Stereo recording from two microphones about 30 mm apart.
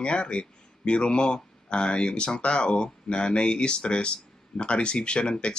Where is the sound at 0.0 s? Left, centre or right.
Left.